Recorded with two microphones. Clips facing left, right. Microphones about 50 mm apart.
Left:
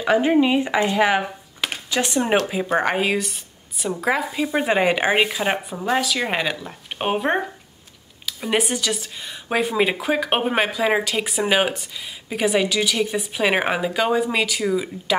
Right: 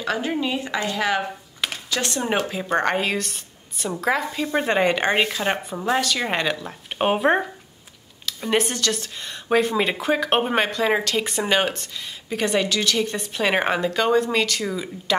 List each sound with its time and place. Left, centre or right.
0.0 s speech: left